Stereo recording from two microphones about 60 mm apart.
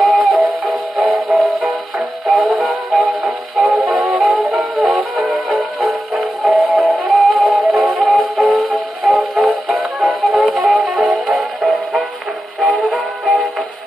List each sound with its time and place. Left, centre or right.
0.0 s music: centre
3.7 s music: right
4.0 s music: centre
4.4 s music: right
4.7 s music: centre